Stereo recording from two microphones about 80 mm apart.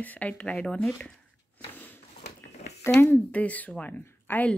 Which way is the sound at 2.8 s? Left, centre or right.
Left.